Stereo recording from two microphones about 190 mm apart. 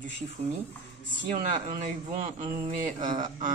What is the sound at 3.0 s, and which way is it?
Speech, 40° right (ahead or behind).